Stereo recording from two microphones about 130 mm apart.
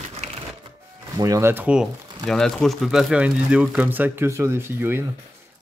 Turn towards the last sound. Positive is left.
turn(degrees=-15)  # may be behind; listen again after turning